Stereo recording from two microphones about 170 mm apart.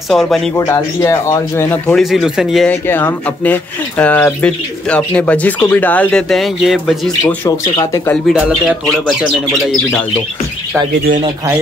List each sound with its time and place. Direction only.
0.1 s speech: centre (ahead or behind)
0.6 s speech: 20° left (ahead or behind)
2.0 s speech: centre (ahead or behind)
2.7 s speech: 10° left (ahead or behind)
8.1 s speech: 5° right (ahead or behind)